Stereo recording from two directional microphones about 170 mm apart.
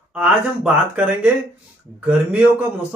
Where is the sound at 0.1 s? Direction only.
5° right (ahead or behind).